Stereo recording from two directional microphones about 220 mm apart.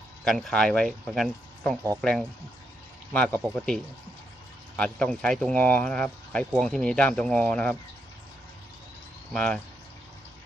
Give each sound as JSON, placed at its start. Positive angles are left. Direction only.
{"t": 0.2, "sound": "speech", "side_deg": 0}
{"t": 9.3, "sound": "speech", "side_deg": 5}